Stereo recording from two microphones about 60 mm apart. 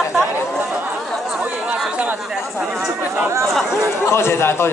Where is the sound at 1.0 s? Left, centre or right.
Centre.